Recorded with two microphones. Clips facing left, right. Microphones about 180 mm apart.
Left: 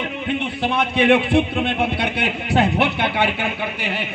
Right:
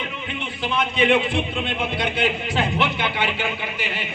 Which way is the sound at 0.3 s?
60° left (ahead or behind).